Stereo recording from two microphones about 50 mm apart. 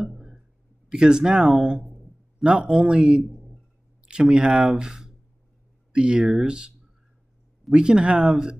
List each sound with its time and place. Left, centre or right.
0.0 s a sound: centre
0.8 s speech: centre
7.7 s speech: centre